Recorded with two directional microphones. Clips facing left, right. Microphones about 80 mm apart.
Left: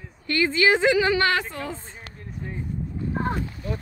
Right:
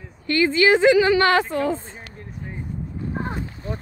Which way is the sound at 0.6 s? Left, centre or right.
Right.